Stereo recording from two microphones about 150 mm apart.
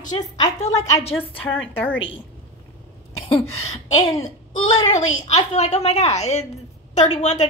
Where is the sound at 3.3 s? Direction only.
45° left (ahead or behind).